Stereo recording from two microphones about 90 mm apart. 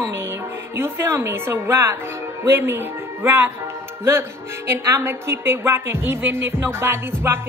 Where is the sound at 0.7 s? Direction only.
30° right (ahead or behind).